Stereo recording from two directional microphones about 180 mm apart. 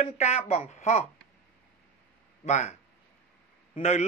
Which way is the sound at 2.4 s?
40° left (ahead or behind).